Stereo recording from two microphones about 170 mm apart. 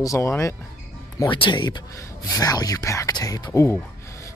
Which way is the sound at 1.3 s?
30° left (ahead or behind).